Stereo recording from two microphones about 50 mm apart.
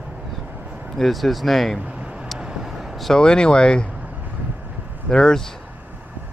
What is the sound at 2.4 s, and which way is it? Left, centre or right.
Vehicle, centre.